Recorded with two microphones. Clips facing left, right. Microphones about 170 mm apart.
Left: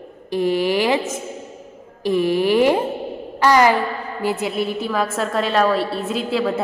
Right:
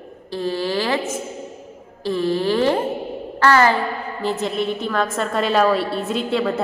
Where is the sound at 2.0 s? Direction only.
15° left (ahead or behind).